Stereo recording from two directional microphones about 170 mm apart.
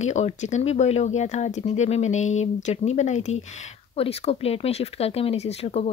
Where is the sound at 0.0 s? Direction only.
45° left (ahead or behind).